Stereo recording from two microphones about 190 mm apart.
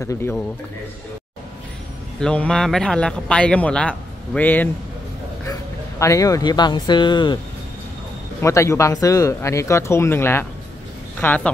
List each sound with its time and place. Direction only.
0.0 s speech: 15° left (ahead or behind)
2.1 s speech: 5° left (ahead or behind); by 7.3 s 25° left (ahead or behind)
8.4 s speech: 15° left (ahead or behind)